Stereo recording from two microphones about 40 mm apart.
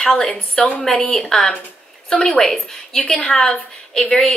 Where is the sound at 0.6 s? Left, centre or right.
Left.